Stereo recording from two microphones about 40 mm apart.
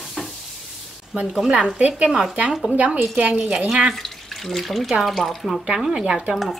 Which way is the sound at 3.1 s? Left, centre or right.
Right.